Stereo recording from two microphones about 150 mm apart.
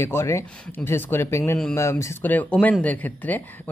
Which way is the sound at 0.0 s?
15° left (ahead or behind).